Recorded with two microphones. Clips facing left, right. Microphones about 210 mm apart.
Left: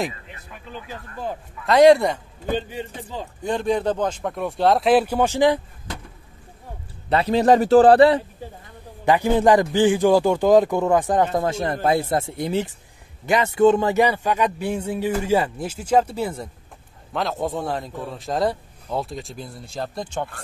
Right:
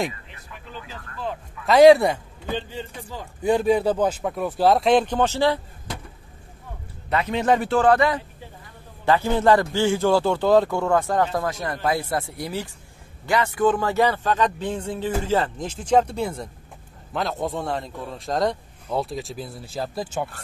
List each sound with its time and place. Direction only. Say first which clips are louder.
1.7 s a man's voice: right 1 dB; 5° right (ahead or behind)
3.4 s a man's voice: right 3 dB; 10° right (ahead or behind); by 5.6 s 15° left (ahead or behind)
7.1 s a man's voice: left 5 dB; 35° left (ahead or behind)
9.0 s a man's voice: left 2 dB; 15° left (ahead or behind); by 20.2 s 5° right (ahead or behind)